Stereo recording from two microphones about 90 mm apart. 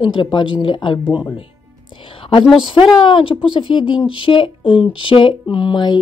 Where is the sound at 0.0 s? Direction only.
65° left (ahead or behind).